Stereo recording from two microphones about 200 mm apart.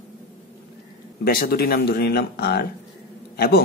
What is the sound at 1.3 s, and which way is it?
A man's voice, 50° left (ahead or behind).